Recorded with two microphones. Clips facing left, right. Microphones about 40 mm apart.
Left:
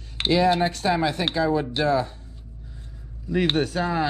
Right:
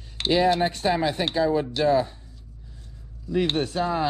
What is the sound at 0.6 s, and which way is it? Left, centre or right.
Speech, centre.